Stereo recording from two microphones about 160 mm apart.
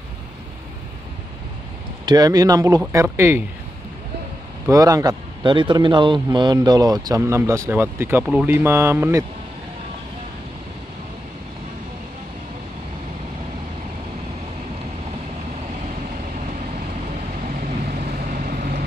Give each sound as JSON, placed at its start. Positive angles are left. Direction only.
{"t": 2.0, "sound": "a man's voice", "side_deg": -25}
{"t": 4.6, "sound": "a man's voice", "side_deg": -20}
{"t": 17.6, "sound": "vehicle", "side_deg": -60}